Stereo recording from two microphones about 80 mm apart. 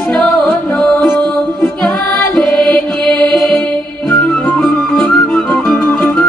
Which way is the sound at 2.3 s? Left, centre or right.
Centre.